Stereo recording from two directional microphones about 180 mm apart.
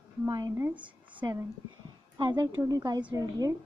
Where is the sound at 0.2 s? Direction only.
20° right (ahead or behind).